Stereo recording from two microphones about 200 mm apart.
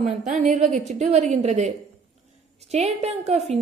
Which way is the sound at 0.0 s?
35° right (ahead or behind).